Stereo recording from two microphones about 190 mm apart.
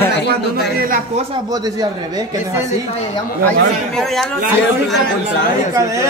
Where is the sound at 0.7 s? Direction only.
50° right (ahead or behind).